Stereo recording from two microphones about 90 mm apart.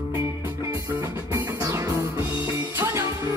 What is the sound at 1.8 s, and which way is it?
Music, 40° right (ahead or behind).